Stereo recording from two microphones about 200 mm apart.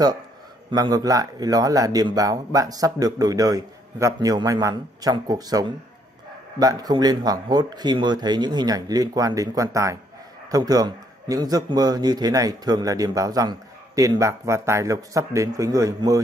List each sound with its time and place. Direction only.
0.7 s a man's voice: 20° right (ahead or behind)